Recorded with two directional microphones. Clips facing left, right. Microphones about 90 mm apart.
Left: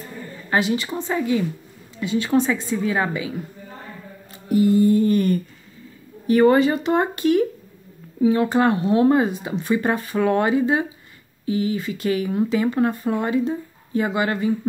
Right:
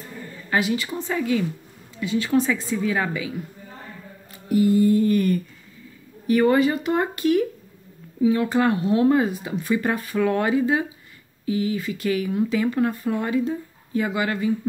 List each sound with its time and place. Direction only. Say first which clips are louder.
0.5 s speech: left 2 dB; 25° left (ahead or behind)
4.3 s mantra: left 1 dB; 25° left (ahead or behind)
6.2 s speech: left 3 dB; 35° left (ahead or behind)